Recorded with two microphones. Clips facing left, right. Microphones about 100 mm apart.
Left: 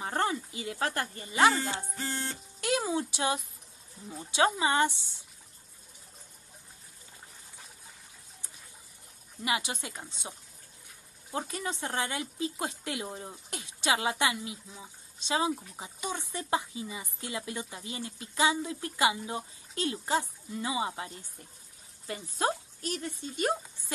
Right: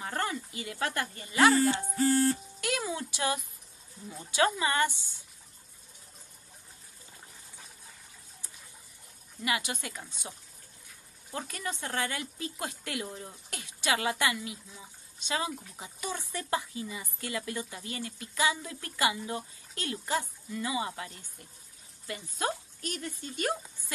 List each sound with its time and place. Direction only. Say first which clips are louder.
0.0 s speech: left 3 dB; 30° left (ahead or behind)
4.5 s speech: left 2 dB; 20° left (ahead or behind)
9.4 s speech: left 1 dB; 25° left (ahead or behind)
11.3 s a woman's voice: left 2 dB; 20° left (ahead or behind)